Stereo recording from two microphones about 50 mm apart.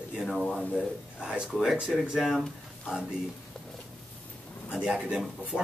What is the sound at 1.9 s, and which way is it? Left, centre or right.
Speech, centre.